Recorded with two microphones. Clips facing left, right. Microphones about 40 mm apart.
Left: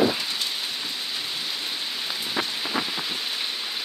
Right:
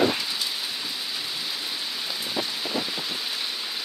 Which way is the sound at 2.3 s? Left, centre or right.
Left.